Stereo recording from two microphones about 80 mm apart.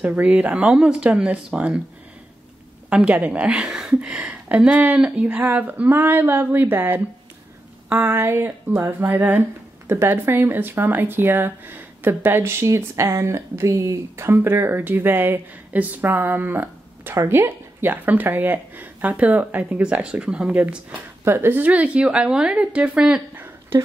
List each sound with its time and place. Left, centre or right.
0.0 s a woman's voice: centre
2.9 s speech: centre
21.2 s a woman's voice: right; by 23.4 s centre